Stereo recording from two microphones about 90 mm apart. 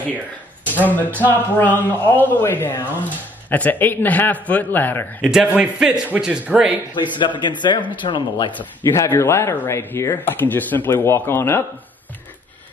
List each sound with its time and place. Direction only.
0.7 s speech: 20° left (ahead or behind)
5.2 s a man's voice: 5° right (ahead or behind)
6.9 s speech: 60° left (ahead or behind)
8.9 s speech: 30° left (ahead or behind)